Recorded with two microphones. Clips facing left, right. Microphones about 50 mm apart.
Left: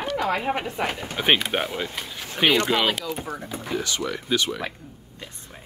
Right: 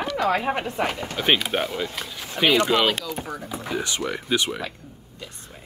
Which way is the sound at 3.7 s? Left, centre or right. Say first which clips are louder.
Even; centre.